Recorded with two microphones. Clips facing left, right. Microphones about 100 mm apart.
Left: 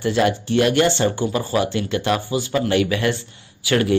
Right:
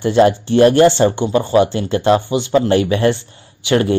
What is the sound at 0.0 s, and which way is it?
Speech, 30° right (ahead or behind).